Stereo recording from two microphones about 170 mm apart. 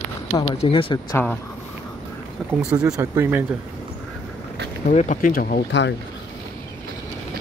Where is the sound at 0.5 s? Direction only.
35° left (ahead or behind).